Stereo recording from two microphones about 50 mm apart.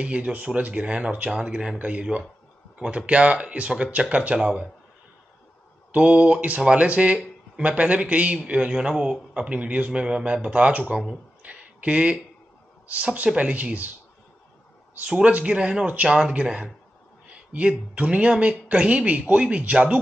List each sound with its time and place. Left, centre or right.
0.0 s a woman's voice: right
5.9 s a woman's voice: right
9.3 s a woman's voice: right
11.4 s a sound: right
12.8 s a woman's voice: right
15.0 s a man's voice: centre
16.2 s a man's voice: centre